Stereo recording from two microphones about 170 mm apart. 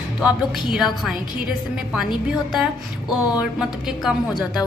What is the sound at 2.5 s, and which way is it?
A woman's voice, 5° right (ahead or behind).